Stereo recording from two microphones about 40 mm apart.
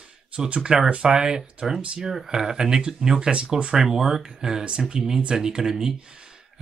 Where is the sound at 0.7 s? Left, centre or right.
Centre.